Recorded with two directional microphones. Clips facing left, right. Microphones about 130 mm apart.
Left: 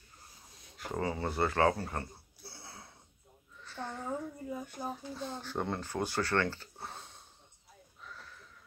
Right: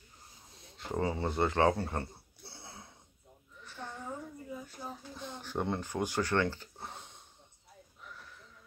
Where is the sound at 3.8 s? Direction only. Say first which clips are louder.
Left 4 dB; 35° left (ahead or behind).